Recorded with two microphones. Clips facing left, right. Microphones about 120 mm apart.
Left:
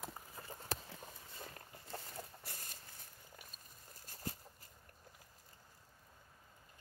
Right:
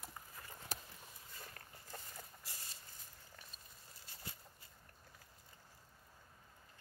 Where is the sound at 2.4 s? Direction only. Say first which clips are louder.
Left 3 dB; 60° left (ahead or behind).